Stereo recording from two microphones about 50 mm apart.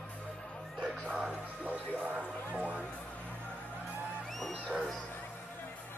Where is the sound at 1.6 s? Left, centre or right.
Right.